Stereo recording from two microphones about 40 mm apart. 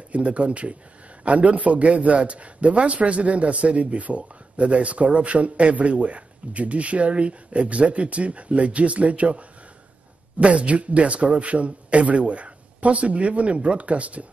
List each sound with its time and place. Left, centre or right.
0.1 s a man's voice: right